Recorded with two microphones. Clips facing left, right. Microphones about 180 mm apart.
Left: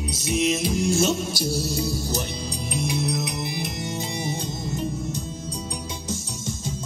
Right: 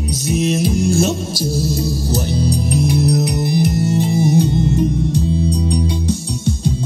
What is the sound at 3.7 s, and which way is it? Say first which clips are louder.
Music: right 13 dB; 40° right (ahead or behind).